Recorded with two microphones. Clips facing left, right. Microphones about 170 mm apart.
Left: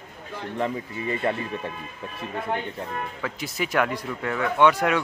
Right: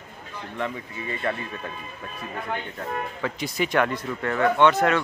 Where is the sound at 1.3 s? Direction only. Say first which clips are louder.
Even; 30° left (ahead or behind).